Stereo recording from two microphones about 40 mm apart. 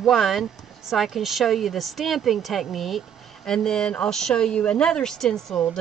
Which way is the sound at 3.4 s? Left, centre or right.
Centre.